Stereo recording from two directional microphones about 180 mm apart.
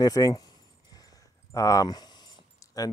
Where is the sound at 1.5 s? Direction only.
20° left (ahead or behind).